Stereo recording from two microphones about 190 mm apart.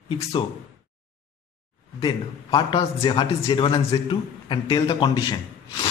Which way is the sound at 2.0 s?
25° left (ahead or behind).